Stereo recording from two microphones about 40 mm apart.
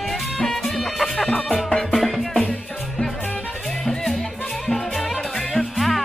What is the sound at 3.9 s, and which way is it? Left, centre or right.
Music, centre.